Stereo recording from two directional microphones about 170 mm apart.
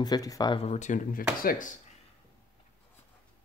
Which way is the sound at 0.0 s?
20° left (ahead or behind).